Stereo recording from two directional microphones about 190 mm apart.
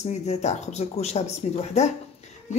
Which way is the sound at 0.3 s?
35° left (ahead or behind).